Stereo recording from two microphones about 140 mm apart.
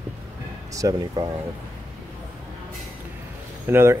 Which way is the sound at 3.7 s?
15° right (ahead or behind).